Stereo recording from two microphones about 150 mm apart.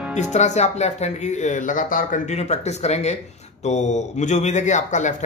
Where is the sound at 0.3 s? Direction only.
50° left (ahead or behind).